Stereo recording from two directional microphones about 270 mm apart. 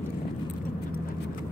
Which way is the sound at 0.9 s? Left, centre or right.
Left.